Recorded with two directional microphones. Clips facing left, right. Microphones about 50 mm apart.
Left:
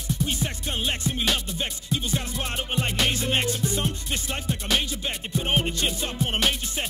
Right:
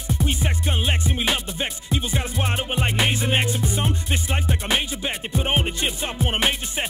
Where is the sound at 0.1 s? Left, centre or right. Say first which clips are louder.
Right 3 dB; right.